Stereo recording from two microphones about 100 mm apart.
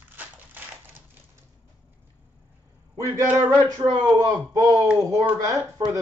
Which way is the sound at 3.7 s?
40° right (ahead or behind).